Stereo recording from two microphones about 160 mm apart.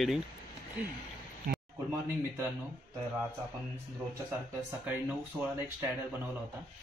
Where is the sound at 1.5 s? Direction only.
70° right (ahead or behind).